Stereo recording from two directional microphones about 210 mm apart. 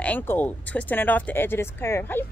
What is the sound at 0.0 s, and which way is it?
Speech, 10° left (ahead or behind).